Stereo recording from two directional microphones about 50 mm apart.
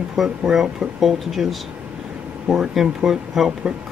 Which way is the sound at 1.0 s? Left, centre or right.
Centre.